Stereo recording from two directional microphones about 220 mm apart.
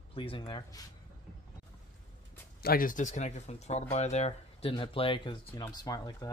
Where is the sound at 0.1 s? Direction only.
25° left (ahead or behind).